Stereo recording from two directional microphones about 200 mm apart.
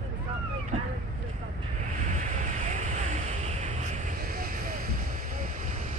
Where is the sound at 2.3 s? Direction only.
35° right (ahead or behind).